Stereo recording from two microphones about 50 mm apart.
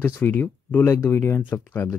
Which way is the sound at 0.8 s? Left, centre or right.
Left.